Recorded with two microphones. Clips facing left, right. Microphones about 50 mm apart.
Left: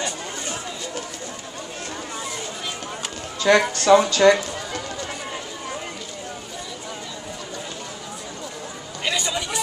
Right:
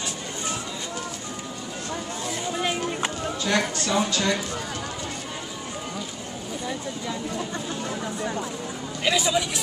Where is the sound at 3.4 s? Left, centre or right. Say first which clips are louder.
Left 8 dB; left.